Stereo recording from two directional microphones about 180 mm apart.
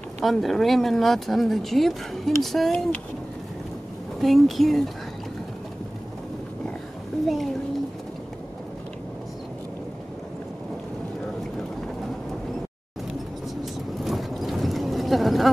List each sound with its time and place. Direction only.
0.2 s speech: centre (ahead or behind)
4.2 s speech: centre (ahead or behind)
7.2 s speech: centre (ahead or behind)
14.0 s clip-clop: centre (ahead or behind)